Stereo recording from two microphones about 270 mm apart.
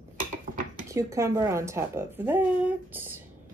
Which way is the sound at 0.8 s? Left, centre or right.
Centre.